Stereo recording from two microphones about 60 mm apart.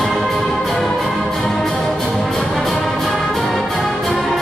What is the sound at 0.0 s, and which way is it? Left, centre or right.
Music, centre.